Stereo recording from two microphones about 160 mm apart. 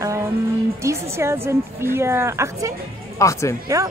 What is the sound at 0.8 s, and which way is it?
A woman's voice, 15° right (ahead or behind).